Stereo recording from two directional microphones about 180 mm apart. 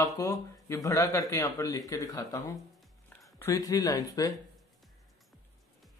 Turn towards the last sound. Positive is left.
turn(degrees=20)  # may be behind; listen again after turning